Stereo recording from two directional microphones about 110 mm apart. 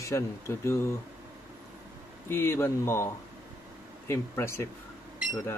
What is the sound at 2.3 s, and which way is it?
Speech, 20° left (ahead or behind).